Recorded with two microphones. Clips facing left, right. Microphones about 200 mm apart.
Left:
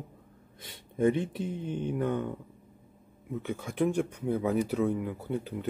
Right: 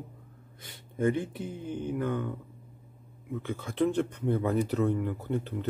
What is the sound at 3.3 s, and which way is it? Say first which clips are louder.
Speech: even; 15° left (ahead or behind).